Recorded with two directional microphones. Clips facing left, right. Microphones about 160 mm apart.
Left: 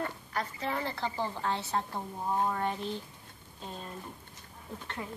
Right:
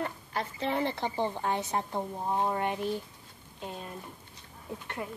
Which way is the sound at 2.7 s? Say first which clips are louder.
Right 4 dB; 10° right (ahead or behind).